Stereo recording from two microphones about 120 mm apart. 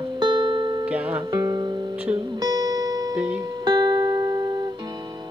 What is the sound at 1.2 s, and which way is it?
Music, 35° right (ahead or behind).